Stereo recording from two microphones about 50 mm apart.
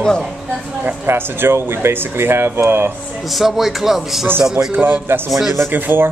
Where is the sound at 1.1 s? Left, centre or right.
Right.